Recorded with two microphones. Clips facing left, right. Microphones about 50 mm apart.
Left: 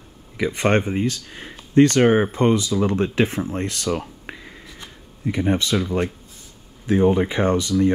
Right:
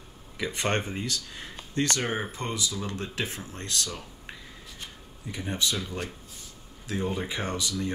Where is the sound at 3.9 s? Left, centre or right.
Left.